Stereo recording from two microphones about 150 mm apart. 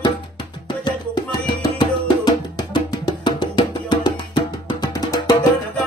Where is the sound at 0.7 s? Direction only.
30° left (ahead or behind).